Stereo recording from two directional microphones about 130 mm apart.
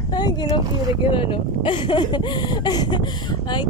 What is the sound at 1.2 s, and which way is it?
Speech, 40° left (ahead or behind).